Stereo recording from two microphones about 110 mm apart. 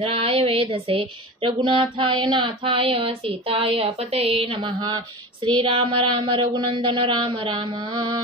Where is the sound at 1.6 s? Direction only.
50° right (ahead or behind).